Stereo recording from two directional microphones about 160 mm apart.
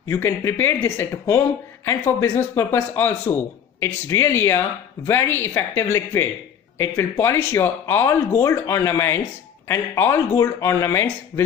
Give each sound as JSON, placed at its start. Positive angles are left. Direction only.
{"t": 0.1, "sound": "a man's voice", "side_deg": 15}